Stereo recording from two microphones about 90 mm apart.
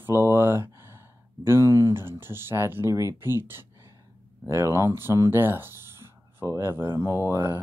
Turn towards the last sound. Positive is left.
turn(degrees=-25)  # may be behind; listen again after turning